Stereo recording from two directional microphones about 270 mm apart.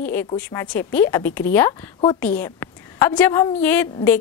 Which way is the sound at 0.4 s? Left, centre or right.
Centre.